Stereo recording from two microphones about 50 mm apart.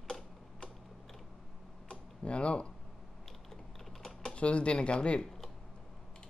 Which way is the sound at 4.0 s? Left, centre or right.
Centre.